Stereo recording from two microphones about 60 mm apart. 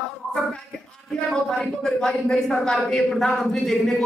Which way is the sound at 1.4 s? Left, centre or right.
Centre.